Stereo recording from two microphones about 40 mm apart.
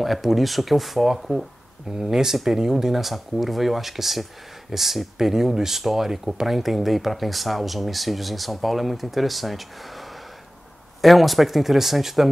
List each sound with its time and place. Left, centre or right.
0.0 s speech: centre